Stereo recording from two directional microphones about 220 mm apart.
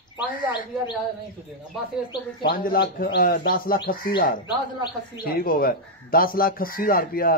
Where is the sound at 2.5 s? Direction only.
45° left (ahead or behind).